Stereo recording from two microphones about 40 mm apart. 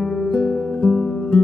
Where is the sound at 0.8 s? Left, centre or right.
Left.